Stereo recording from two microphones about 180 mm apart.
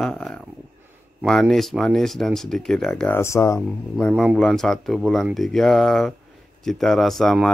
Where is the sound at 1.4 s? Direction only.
Centre (ahead or behind).